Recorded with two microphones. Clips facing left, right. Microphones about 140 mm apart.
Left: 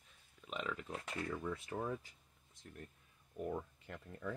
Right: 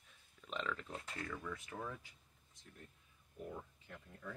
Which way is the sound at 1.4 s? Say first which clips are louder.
Left 5 dB; 30° left (ahead or behind).